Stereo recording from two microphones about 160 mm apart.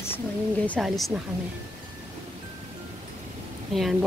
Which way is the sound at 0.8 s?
Centre (ahead or behind).